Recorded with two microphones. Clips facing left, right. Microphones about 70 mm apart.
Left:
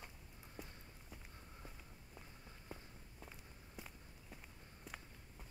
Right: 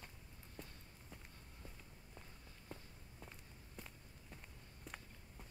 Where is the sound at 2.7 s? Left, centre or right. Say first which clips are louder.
Even; centre.